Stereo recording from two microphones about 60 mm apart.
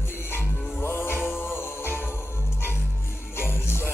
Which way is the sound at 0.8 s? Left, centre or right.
Left.